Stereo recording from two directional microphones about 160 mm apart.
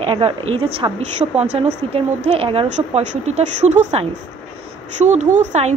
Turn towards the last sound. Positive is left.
turn(degrees=-50)  # may be behind; listen again after turning